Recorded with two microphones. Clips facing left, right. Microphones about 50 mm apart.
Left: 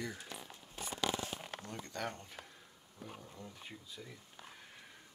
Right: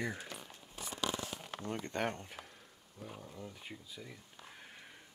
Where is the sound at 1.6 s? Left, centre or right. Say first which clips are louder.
Right 6 dB; right.